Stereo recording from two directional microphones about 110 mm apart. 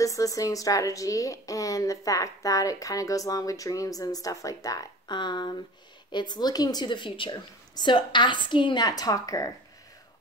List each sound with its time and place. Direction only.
0.0 s a woman's voice: 30° left (ahead or behind)